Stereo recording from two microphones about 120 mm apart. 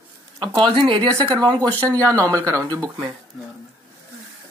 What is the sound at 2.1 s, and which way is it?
Speech, 25° right (ahead or behind).